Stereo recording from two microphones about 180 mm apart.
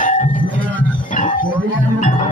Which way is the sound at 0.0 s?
45° left (ahead or behind).